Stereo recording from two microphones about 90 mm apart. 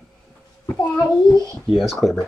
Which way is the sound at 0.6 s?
40° left (ahead or behind).